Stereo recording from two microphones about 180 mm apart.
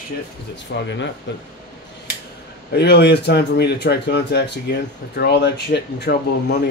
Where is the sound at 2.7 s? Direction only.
65° left (ahead or behind).